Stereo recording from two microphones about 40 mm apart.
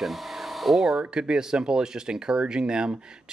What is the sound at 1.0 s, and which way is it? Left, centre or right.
Speech, right.